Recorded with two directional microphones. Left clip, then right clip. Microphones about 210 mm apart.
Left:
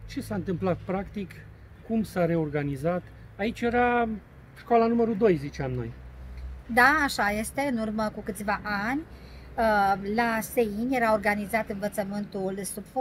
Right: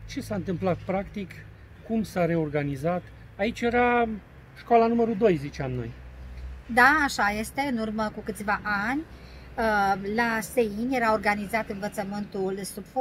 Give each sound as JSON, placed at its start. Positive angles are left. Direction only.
{"t": 0.1, "sound": "speech", "side_deg": -15}
{"t": 6.7, "sound": "a woman's voice", "side_deg": 10}